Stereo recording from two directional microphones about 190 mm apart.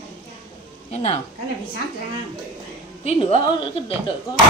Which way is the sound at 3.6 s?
25° left (ahead or behind).